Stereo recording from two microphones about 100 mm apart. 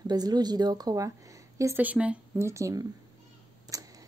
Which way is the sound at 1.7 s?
15° right (ahead or behind).